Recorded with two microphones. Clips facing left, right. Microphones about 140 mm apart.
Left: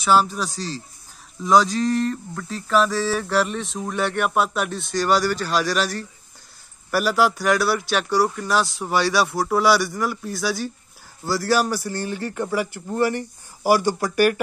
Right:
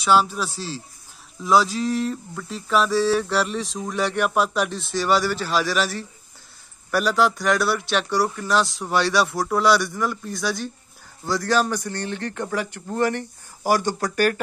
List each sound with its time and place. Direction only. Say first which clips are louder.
0.0 s a man's voice: even; centre (ahead or behind)